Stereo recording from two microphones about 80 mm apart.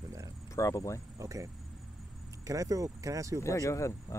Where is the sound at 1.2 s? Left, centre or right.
Right.